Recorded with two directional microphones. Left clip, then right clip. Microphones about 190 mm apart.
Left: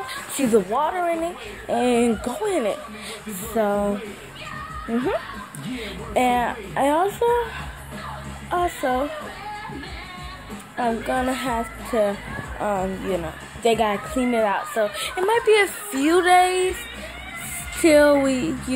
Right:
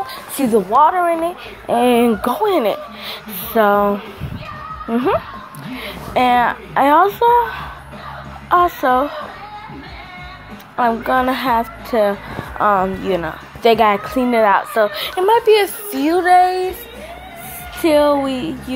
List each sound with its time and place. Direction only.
0.0 s a woman's voice: centre (ahead or behind)
4.9 s a woman's voice: centre (ahead or behind)
8.5 s a woman's voice: 5° left (ahead or behind)
10.8 s a woman's voice: centre (ahead or behind)
17.8 s speech: 25° left (ahead or behind)